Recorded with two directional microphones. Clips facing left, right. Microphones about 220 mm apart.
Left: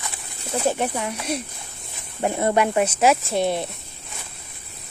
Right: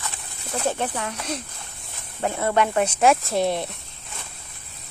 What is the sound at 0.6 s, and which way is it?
Speech, 10° left (ahead or behind).